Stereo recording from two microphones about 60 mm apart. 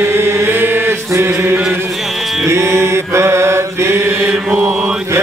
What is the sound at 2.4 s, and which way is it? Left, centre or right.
Mantra, right.